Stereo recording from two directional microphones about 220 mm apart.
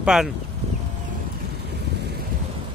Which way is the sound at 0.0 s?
Centre (ahead or behind).